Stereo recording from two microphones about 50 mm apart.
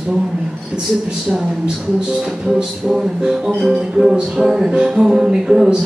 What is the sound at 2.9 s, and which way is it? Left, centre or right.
Music, centre.